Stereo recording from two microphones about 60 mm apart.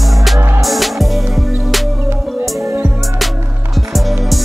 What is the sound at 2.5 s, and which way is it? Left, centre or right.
Music, right.